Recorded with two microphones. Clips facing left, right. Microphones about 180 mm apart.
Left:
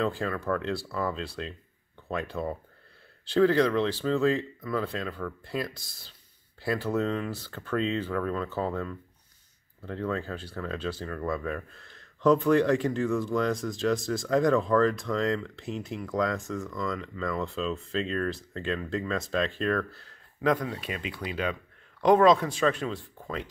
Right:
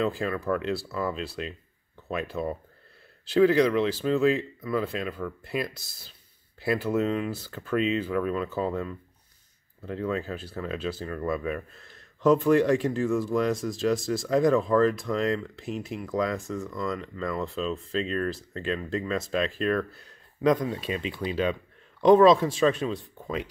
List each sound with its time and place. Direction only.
0.0 s speech: 10° right (ahead or behind)
20.1 s speech: 20° right (ahead or behind)